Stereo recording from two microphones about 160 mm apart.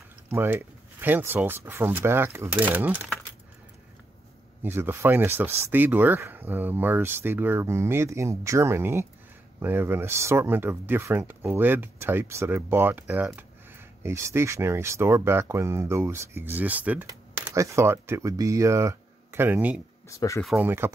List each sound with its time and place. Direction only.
0.3 s speech: 15° right (ahead or behind)
4.6 s speech: 15° right (ahead or behind)
20.1 s speech: 20° left (ahead or behind)
20.4 s speech: 10° right (ahead or behind)